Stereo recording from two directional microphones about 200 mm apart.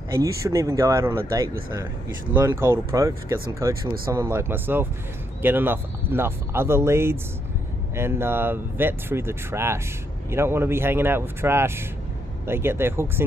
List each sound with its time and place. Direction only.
0.1 s speech: 15° right (ahead or behind)